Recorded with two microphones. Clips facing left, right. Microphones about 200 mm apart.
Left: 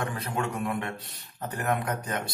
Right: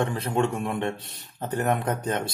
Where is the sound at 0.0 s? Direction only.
30° right (ahead or behind).